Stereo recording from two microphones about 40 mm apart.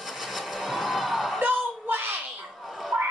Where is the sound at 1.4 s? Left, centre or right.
Right.